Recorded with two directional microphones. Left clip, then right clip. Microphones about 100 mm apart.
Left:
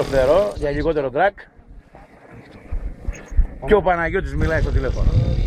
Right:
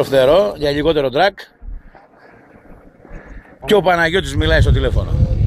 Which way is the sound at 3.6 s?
30° right (ahead or behind).